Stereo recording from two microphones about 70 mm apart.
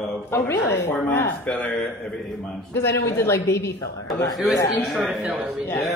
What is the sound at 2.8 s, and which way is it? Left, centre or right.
Speech, left.